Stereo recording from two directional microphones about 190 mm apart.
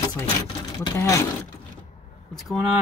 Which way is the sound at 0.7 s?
20° left (ahead or behind).